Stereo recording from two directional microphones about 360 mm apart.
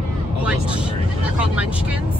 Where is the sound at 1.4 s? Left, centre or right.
Centre.